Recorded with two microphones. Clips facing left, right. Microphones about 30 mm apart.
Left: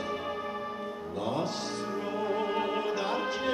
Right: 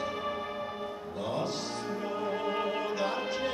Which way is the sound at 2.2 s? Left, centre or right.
Left.